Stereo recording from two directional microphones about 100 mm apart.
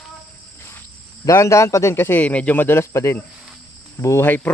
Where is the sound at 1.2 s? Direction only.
30° left (ahead or behind).